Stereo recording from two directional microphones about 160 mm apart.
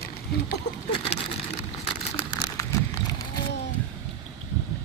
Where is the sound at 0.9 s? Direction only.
35° left (ahead or behind).